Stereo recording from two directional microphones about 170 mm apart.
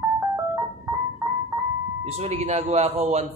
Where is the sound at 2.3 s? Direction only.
40° right (ahead or behind).